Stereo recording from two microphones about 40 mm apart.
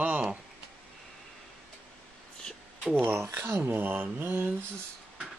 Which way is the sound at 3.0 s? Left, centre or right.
Right.